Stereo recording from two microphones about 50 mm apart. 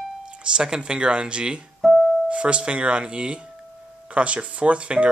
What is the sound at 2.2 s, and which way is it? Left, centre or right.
Speech, right.